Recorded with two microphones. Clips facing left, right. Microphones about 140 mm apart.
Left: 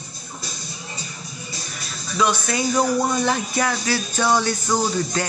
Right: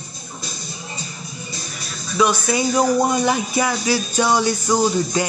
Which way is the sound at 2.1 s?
10° right (ahead or behind).